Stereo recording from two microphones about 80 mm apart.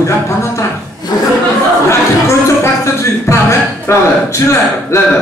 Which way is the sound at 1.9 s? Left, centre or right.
Left.